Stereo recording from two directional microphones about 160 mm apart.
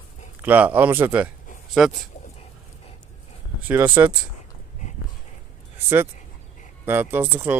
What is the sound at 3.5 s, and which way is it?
Speech, 10° right (ahead or behind).